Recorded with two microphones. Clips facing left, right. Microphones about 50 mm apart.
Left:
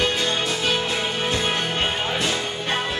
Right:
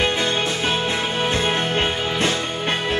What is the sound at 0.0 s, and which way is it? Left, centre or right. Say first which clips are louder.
Music: right 2 dB; right.